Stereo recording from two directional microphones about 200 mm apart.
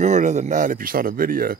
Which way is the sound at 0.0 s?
35° right (ahead or behind).